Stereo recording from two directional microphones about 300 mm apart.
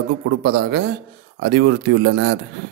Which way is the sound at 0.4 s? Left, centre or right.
Right.